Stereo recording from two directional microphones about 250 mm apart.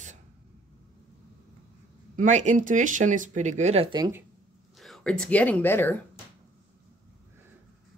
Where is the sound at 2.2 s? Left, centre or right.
Right.